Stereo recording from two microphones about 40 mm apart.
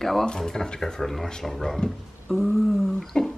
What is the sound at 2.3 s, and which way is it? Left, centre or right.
Speech, centre.